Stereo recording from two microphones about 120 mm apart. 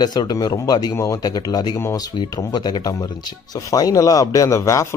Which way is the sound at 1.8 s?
25° left (ahead or behind).